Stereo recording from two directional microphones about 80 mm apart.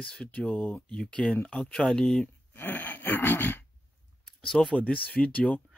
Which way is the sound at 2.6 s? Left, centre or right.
Left.